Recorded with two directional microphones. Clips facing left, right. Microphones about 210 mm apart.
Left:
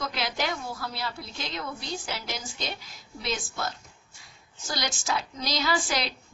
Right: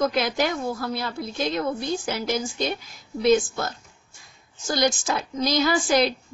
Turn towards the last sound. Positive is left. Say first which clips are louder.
# right 8 dB
turn(degrees=-50)  # may be behind; listen again after turning